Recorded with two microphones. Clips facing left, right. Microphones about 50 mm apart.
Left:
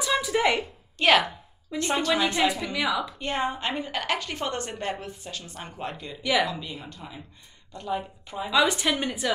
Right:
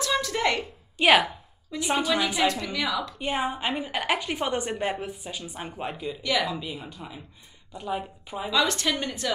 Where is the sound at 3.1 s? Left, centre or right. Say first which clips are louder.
Even; centre.